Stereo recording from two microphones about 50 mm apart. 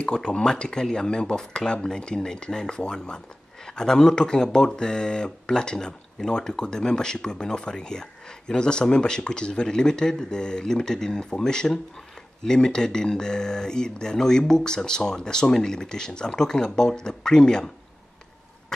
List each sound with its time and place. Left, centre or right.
0.0 s speech: left